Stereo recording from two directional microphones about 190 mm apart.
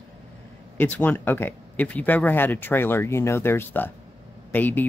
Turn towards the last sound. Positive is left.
turn(degrees=10)  # may be behind; listen again after turning